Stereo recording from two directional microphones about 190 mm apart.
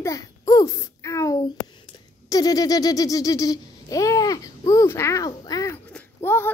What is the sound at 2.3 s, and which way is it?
Babbling, 20° left (ahead or behind).